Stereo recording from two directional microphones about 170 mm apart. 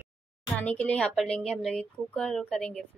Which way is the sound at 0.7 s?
5° left (ahead or behind).